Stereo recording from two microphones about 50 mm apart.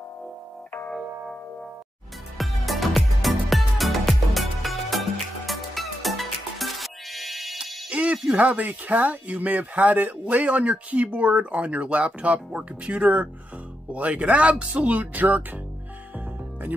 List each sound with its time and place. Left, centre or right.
2.3 s music: centre
7.9 s music: right
8.4 s speech: right